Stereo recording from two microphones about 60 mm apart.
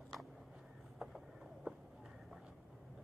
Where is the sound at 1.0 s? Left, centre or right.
Centre.